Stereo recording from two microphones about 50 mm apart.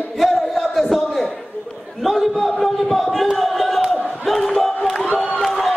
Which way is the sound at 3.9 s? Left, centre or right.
Centre.